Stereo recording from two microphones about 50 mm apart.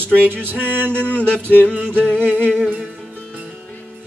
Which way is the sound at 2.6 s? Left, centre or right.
Right.